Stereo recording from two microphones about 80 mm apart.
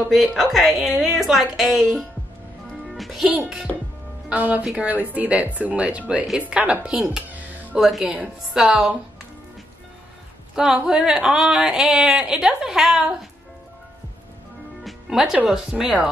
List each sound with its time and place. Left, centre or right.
0.1 s a woman's voice: centre
2.9 s music: centre
3.3 s a woman's voice: centre
7.7 s a woman's voice: centre
10.5 s a woman's voice: centre
14.9 s music: centre
15.4 s a woman's voice: centre